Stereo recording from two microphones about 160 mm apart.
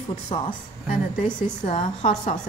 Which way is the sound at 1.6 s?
45° left (ahead or behind).